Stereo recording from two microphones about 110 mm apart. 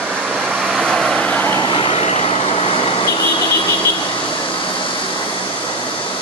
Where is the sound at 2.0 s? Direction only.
80° left; by 2.9 s 60° left (ahead or behind).